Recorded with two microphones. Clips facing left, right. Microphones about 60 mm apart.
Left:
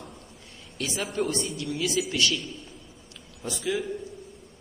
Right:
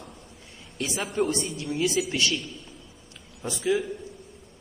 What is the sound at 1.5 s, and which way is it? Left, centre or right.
Speech, right.